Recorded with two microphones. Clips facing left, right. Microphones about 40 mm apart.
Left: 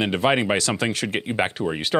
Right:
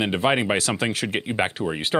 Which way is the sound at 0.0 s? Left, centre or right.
Centre.